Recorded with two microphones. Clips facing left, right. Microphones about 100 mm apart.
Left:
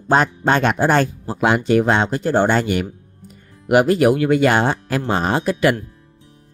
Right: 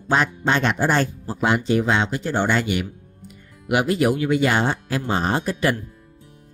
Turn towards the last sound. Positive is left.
turn(degrees=75)  # may be behind; listen again after turning